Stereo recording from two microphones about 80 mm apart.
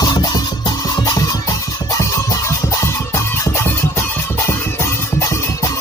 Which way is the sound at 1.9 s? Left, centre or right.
Left.